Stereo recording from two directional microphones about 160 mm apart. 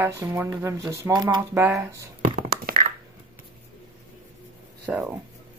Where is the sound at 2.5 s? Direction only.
65° right (ahead or behind).